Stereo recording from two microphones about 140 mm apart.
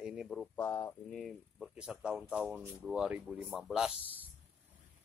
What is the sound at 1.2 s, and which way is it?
Speech, centre (ahead or behind).